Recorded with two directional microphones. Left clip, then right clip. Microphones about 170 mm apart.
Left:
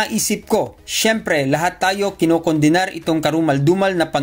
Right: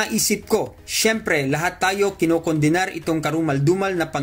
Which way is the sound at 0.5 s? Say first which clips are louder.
Left 3 dB; 30° left (ahead or behind).